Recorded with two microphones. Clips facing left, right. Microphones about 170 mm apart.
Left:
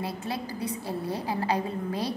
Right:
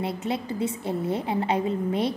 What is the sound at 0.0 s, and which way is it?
A woman's voice, 25° right (ahead or behind).